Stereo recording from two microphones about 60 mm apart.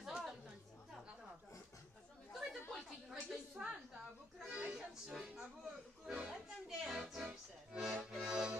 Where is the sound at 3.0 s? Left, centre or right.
Centre.